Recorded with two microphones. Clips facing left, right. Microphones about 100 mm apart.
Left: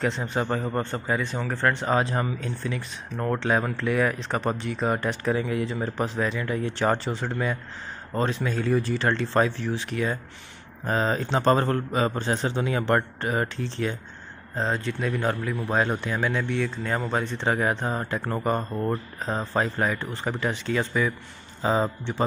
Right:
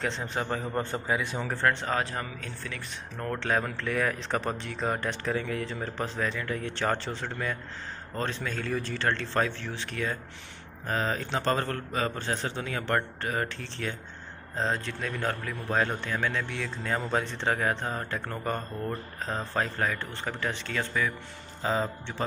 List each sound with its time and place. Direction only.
0.0 s a man's voice: 5° left (ahead or behind)
1.9 s speech: 20° left (ahead or behind)
10.9 s a man's voice: 25° left (ahead or behind)
14.5 s speech: centre (ahead or behind); by 22.1 s 20° left (ahead or behind)